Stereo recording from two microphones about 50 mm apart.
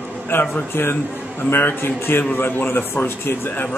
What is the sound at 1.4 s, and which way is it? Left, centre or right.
A man's voice, left.